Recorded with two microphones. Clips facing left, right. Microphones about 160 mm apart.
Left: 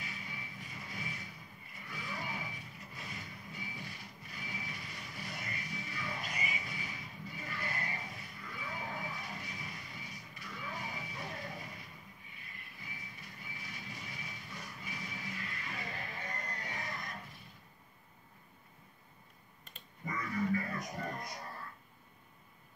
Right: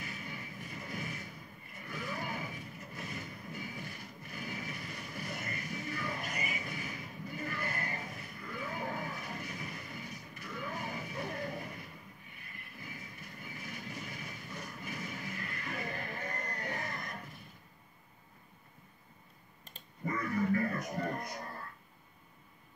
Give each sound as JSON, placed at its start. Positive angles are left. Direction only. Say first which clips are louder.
{"t": 0.0, "sound": "vehicle", "louder": "right 3 dB", "side_deg": -50}
{"t": 20.1, "sound": "music", "louder": "right 3 dB", "side_deg": -55}